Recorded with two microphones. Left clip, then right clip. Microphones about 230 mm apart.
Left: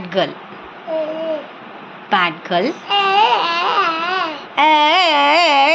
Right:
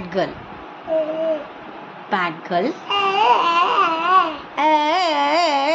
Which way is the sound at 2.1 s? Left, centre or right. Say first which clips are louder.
Left 5 dB; centre.